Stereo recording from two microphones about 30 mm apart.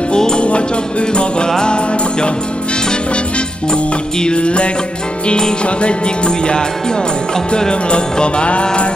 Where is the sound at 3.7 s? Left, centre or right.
Left.